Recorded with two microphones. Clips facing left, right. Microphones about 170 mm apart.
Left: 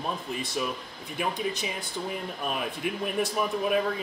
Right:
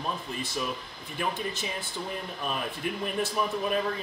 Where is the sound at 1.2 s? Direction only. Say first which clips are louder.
Left 2 dB; 15° left (ahead or behind).